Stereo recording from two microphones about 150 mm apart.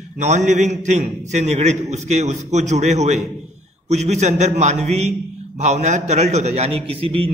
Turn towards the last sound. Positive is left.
turn(degrees=-40)  # may be behind; listen again after turning